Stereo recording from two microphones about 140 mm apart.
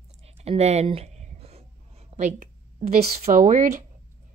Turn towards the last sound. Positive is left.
turn(degrees=-75)  # may be behind; listen again after turning